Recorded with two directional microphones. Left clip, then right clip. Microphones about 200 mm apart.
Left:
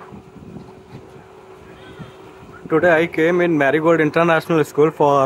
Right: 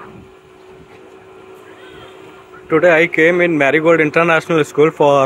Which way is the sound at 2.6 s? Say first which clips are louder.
Right 4 dB; 10° left (ahead or behind).